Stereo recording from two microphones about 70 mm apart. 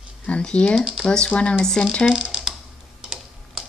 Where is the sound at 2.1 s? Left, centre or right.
Centre.